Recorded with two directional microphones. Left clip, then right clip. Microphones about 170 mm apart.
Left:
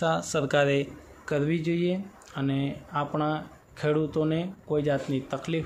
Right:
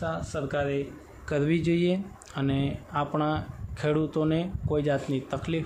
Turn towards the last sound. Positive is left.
turn(degrees=0)  # may be behind; listen again after turning